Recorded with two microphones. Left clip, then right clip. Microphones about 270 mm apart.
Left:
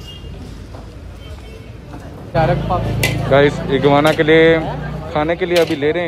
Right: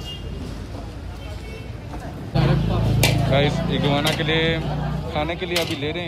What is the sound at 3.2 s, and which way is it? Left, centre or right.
Speech, centre.